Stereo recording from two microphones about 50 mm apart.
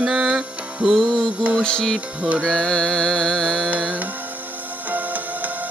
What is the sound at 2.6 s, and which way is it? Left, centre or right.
Carnatic music, centre.